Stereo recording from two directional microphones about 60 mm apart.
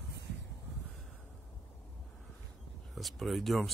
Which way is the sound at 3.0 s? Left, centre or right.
Centre.